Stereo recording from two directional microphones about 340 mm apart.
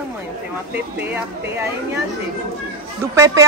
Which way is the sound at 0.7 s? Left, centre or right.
Centre.